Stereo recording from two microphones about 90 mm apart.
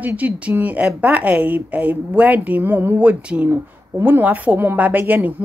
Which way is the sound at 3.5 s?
25° right (ahead or behind).